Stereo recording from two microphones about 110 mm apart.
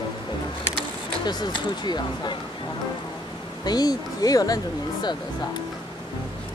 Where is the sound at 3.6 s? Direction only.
35° left (ahead or behind).